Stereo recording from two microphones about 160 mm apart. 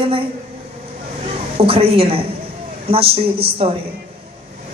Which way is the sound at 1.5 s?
35° right (ahead or behind).